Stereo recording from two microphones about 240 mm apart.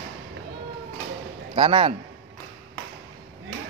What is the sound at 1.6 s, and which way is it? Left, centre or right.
Speech, right.